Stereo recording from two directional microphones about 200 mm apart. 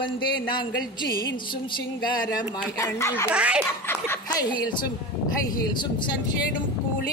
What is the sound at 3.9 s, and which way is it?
Speech, 15° left (ahead or behind).